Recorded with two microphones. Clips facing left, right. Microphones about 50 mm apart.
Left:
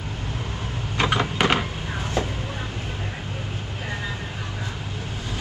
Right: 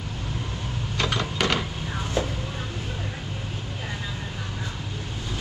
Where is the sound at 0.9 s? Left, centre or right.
Left.